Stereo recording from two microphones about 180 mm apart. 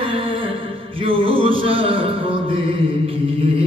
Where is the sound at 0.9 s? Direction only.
30° right (ahead or behind).